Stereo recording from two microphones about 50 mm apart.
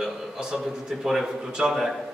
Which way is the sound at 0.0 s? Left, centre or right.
Centre.